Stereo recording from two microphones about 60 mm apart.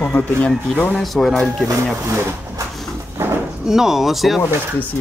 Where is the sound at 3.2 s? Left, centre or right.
Right.